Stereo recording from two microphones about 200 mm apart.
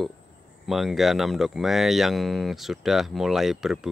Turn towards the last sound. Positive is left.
turn(degrees=0)  # may be behind; listen again after turning